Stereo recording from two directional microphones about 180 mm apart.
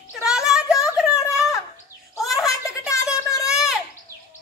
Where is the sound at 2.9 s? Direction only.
15° left (ahead or behind).